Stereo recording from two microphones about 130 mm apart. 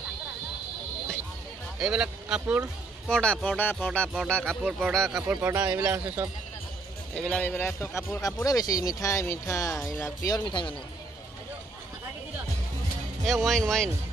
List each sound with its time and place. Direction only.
1.8 s speech: 5° right (ahead or behind)
3.1 s speech: 10° left (ahead or behind)
5.3 s speech: 15° right (ahead or behind)
7.2 s speech: 10° left (ahead or behind)
10.3 s speech: 40° left (ahead or behind)
13.2 s speech: centre (ahead or behind)